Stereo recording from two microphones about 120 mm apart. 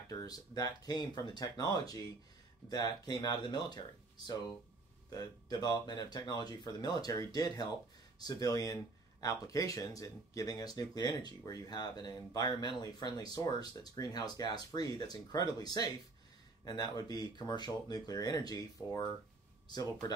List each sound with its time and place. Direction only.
0.1 s speech: 30° left (ahead or behind)
5.1 s speech: 35° left (ahead or behind)